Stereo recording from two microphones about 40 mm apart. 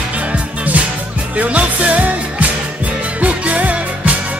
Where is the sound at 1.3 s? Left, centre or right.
Right.